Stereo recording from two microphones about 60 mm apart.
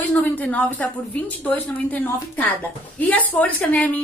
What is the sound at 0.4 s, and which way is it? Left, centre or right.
A woman's voice, left.